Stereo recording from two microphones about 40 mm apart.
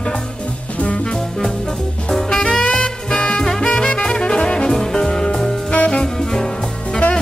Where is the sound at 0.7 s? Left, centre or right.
Left.